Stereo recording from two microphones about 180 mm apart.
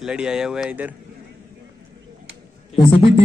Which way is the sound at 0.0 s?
5° right (ahead or behind).